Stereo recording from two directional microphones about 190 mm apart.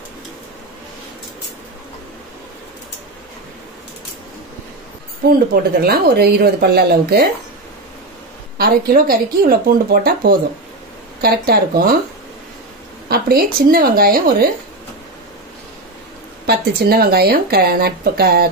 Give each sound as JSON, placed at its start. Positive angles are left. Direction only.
{"t": 5.5, "sound": "speech", "side_deg": -50}
{"t": 8.5, "sound": "speech", "side_deg": -55}
{"t": 13.1, "sound": "speech", "side_deg": -50}
{"t": 16.4, "sound": "speech", "side_deg": -55}